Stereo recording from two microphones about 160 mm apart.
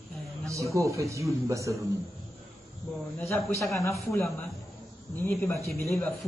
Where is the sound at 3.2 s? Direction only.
15° left (ahead or behind).